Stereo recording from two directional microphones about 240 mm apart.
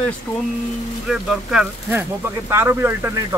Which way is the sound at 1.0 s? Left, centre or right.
Centre.